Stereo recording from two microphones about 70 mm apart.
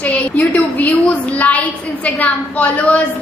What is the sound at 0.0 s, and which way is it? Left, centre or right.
A woman's voice, centre.